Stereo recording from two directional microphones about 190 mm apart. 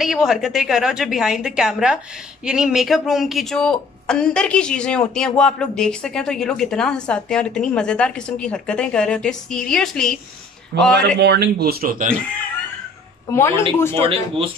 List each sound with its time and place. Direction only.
0.0 s speech: 5° right (ahead or behind)
10.7 s speech: 60° right (ahead or behind)
13.3 s speech: 15° left (ahead or behind)
14.0 s speech: 30° right (ahead or behind)